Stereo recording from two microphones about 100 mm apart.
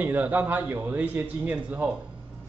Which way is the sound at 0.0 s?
20° right (ahead or behind).